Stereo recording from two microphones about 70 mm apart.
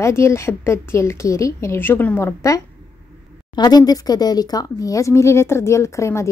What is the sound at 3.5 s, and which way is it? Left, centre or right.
Speech, left.